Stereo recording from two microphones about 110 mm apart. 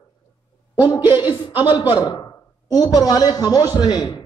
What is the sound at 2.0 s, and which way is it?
A man's voice, 35° left (ahead or behind).